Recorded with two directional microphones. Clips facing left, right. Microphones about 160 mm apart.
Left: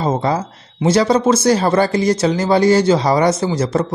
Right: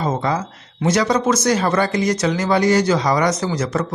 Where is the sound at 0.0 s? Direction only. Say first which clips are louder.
Left 3 dB; 30° left (ahead or behind).